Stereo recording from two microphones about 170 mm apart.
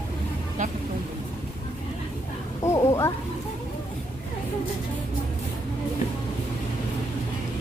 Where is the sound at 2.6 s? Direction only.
15° left (ahead or behind).